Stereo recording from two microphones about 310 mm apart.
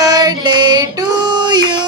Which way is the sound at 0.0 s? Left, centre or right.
Centre.